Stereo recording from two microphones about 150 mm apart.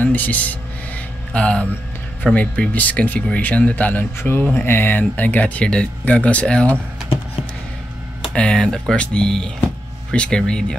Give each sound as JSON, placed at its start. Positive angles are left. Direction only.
{"t": 0.0, "sound": "speech", "side_deg": 10}
{"t": 8.3, "sound": "speech", "side_deg": 5}